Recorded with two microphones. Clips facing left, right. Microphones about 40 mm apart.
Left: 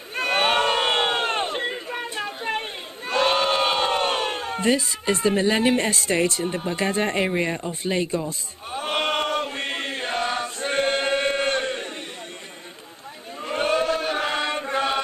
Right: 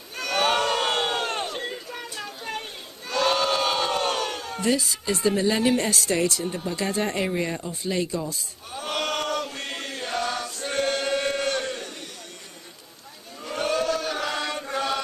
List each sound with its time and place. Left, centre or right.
0.1 s crowd: left
8.3 s chant: left
13.4 s chant: left